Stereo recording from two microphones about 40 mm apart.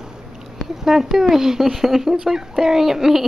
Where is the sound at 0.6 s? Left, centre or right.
Centre.